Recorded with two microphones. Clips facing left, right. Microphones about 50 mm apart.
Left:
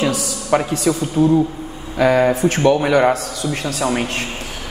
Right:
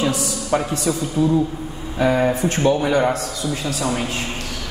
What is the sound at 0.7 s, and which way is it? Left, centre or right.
A man's voice, left.